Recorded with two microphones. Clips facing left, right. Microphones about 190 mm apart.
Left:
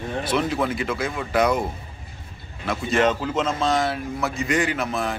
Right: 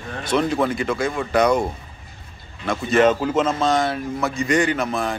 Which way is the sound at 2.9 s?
50° right (ahead or behind).